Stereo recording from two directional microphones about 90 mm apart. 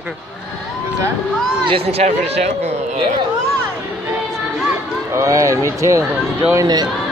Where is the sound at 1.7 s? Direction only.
90° right.